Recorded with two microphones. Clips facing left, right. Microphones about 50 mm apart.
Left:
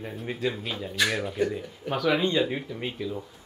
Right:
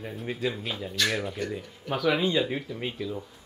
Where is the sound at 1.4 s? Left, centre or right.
Centre.